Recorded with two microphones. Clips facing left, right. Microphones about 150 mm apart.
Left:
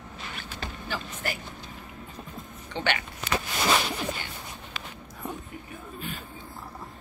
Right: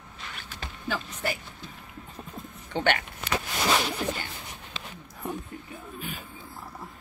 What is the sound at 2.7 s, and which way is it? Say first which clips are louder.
Speech: right 3 dB; 55° right (ahead or behind).